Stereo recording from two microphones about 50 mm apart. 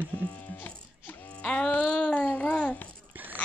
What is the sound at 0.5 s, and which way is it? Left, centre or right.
Music, left.